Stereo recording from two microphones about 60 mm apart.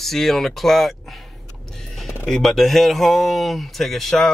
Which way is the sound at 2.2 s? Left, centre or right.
Centre.